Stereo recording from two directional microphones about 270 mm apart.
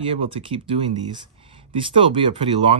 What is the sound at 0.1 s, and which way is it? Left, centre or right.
Speech, right.